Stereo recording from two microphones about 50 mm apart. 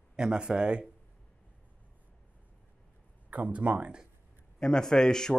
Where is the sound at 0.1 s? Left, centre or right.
Centre.